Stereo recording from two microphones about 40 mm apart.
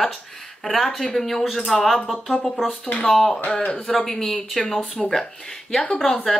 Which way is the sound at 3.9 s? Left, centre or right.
Centre.